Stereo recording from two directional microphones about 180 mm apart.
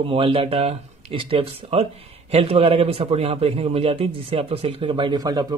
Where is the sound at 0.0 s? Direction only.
30° right (ahead or behind).